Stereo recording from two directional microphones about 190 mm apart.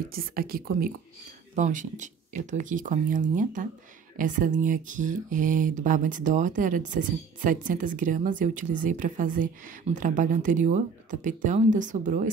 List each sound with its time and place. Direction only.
0.1 s speech: 50° right (ahead or behind)